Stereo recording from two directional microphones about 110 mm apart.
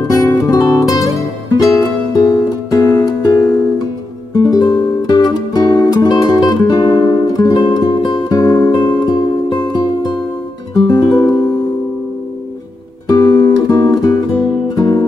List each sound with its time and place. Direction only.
0.0 s music: 30° left (ahead or behind)
13.1 s guitar: 30° left (ahead or behind)
14.8 s music: 40° left (ahead or behind)